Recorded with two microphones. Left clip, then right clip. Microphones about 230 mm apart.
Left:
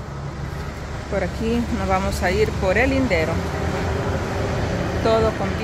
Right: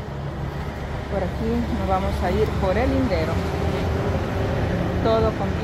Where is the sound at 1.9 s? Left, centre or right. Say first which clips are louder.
Left 2 dB; left.